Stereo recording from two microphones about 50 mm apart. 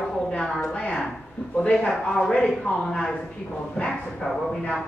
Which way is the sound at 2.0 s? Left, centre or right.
Centre.